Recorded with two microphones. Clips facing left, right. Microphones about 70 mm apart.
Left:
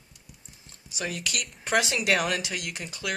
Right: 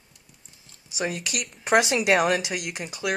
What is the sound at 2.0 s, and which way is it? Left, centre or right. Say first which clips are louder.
Speech: right 5 dB; centre.